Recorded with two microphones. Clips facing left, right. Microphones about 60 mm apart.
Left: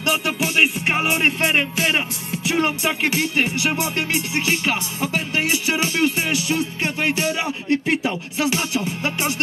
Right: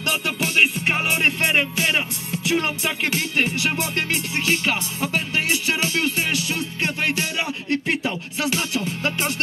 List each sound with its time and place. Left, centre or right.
0.0 s music: centre